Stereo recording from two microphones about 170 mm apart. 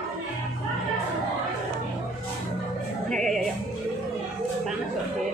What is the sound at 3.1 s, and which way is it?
Music, centre (ahead or behind).